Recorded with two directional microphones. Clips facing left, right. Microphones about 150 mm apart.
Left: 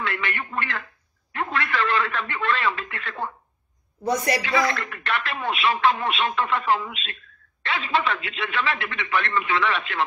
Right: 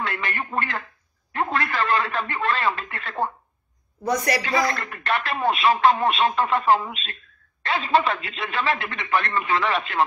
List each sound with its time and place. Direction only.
0.0 s speech: 40° right (ahead or behind)
4.0 s speech: 25° left (ahead or behind)
4.4 s speech: 45° right (ahead or behind)